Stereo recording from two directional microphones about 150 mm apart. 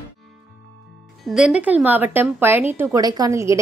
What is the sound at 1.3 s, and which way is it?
A woman's voice, 5° right (ahead or behind).